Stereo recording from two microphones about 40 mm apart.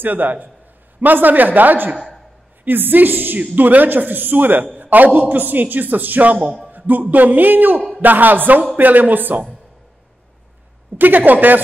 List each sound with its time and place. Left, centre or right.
0.0 s a man's voice: right
2.0 s a sound: centre
2.6 s a woman's voice: right
6.4 s speech: centre
6.7 s a man's voice: right
11.0 s a man's voice: right